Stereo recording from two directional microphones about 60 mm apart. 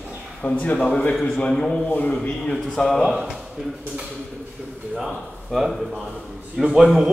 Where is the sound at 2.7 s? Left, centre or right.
Centre.